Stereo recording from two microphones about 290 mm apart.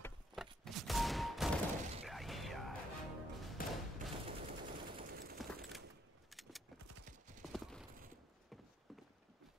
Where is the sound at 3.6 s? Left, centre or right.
Left.